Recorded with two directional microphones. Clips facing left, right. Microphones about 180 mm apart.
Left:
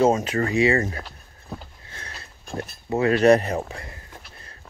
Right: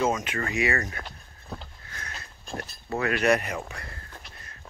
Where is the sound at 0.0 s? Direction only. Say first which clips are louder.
Left 7 dB; 35° left (ahead or behind).